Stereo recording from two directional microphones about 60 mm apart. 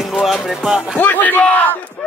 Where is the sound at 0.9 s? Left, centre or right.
Left.